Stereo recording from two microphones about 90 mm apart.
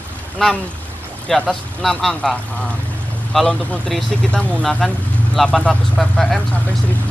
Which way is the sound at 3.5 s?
5° left (ahead or behind).